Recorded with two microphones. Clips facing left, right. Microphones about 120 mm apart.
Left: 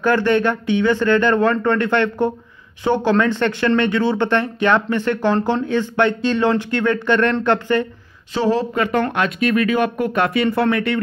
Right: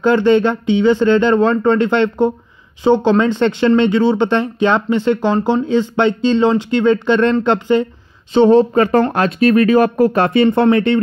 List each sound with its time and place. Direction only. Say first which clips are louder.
0.0 s speech: right 4 dB; 20° right (ahead or behind)
8.3 s speech: right 9 dB; 25° right (ahead or behind)